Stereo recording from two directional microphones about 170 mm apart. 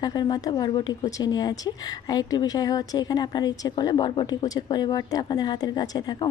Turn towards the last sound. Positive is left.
turn(degrees=25)  # may be behind; listen again after turning